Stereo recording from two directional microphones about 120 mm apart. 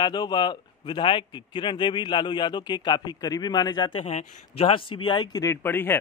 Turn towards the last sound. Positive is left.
turn(degrees=15)  # may be behind; listen again after turning